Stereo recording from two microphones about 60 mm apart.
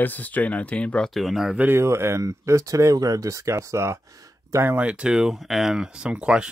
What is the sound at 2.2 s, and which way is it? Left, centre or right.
Speech, right.